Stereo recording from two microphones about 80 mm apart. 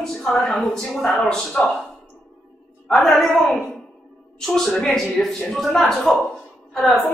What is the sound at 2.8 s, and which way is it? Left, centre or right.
A woman's voice, centre.